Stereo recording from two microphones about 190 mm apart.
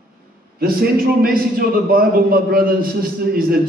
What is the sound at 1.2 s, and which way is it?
A man's voice, 50° right (ahead or behind).